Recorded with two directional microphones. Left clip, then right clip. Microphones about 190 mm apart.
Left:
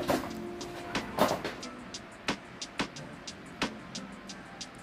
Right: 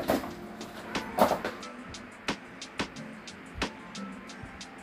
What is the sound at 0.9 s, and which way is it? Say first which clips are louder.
Vehicle: right 1 dB; centre (ahead or behind).